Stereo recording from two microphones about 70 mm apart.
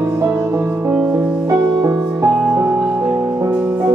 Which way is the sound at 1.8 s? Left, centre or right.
Right.